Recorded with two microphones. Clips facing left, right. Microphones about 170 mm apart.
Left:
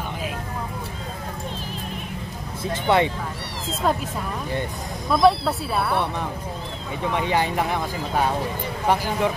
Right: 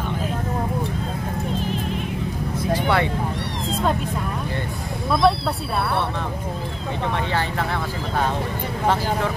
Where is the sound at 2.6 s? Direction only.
20° left (ahead or behind).